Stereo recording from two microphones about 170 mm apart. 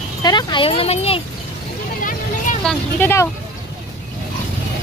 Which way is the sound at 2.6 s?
15° left (ahead or behind).